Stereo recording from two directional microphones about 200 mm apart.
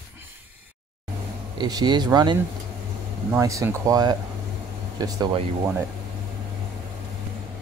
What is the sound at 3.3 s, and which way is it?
Speech, 15° right (ahead or behind).